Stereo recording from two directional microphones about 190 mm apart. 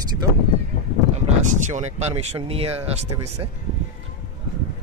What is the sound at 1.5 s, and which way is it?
Speech, 40° right (ahead or behind).